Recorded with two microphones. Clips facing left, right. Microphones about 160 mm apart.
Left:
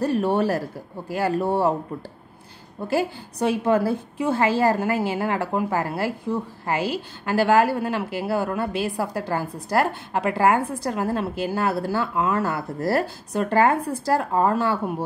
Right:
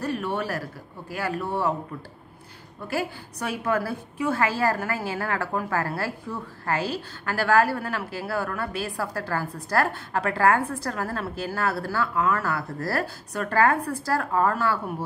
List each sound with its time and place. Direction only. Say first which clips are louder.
0.0 s speech: left 7 dB; 35° left (ahead or behind)
2.9 s a woman's voice: left 5 dB; 25° left (ahead or behind)